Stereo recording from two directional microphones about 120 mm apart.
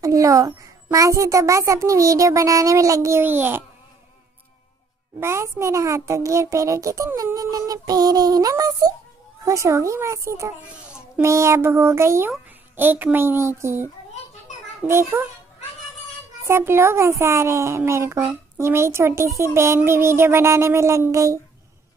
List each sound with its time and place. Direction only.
0.0 s a woman's voice: 30° right (ahead or behind)
5.2 s a woman's voice: 25° right (ahead or behind)
7.3 s child singing: 30° right (ahead or behind)
9.4 s a woman's voice: 25° right (ahead or behind)
14.9 s a woman's voice: 20° right (ahead or behind)
16.4 s a woman's voice: 20° right (ahead or behind)